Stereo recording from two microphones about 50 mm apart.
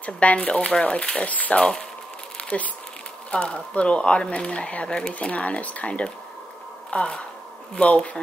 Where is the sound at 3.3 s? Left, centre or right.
Left.